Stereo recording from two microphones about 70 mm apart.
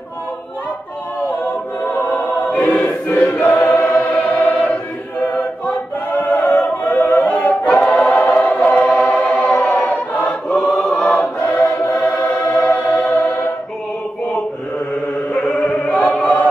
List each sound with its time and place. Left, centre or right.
2.0 s choir: left
6.3 s choir: left
7.7 s choir: centre
12.8 s music: left
15.3 s chant: centre